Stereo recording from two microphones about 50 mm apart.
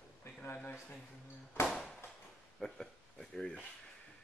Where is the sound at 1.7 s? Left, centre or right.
Centre.